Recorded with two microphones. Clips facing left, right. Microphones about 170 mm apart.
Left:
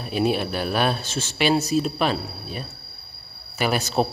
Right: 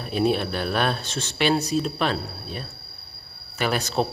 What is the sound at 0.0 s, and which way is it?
A man's voice, 5° left (ahead or behind).